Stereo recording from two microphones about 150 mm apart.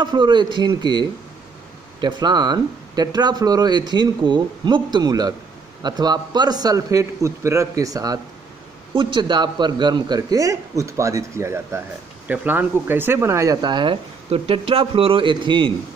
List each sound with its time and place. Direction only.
0.0 s speech: 30° right (ahead or behind)